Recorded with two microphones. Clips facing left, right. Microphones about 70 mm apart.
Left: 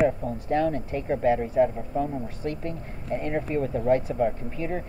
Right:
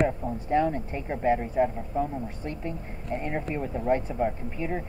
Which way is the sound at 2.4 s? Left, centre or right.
Right.